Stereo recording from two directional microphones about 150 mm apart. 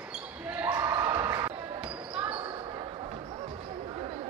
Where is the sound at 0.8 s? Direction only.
15° right (ahead or behind).